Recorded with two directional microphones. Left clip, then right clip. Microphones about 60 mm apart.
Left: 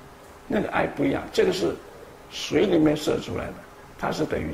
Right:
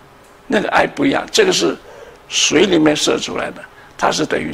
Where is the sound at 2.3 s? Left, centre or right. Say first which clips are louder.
Right 9 dB; right.